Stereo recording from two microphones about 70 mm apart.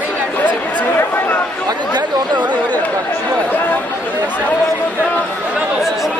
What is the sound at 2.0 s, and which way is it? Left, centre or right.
Chatter, right.